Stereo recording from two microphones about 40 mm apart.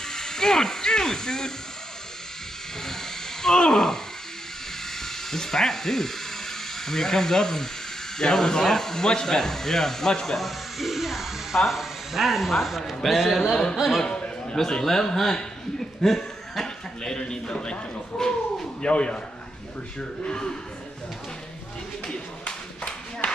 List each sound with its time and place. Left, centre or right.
0.0 s speech: centre
3.4 s speech: centre
5.0 s speech: centre
10.3 s speech: centre
14.0 s a sound: centre
14.7 s speech: centre